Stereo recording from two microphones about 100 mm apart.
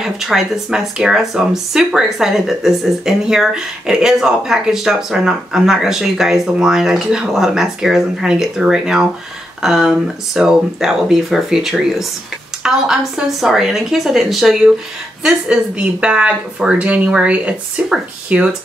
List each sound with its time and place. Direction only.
0.0 s speech: 5° right (ahead or behind)